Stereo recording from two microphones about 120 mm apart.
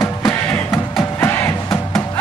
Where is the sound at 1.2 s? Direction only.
20° left (ahead or behind).